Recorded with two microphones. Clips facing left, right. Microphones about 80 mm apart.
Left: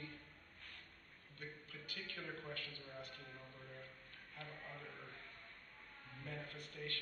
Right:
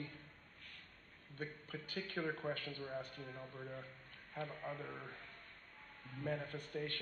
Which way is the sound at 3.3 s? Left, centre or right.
Right.